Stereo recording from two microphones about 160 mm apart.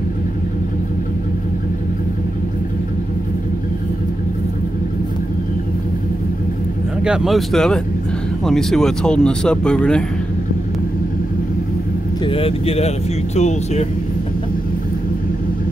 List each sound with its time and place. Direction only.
7.0 s speech: 5° right (ahead or behind)
12.3 s speech: 35° left (ahead or behind)